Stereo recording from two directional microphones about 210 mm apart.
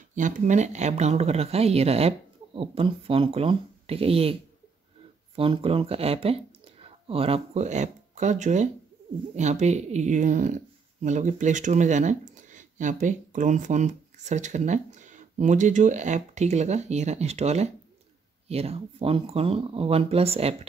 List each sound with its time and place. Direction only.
0.1 s speech: 35° right (ahead or behind)